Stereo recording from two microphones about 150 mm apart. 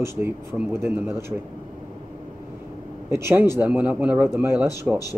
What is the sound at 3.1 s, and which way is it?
A man's voice, 15° right (ahead or behind).